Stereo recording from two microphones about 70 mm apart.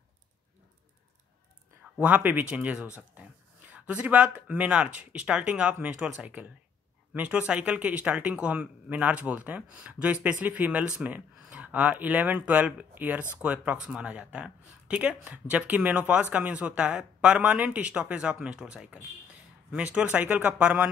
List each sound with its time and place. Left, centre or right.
2.0 s speech: right
7.2 s speech: centre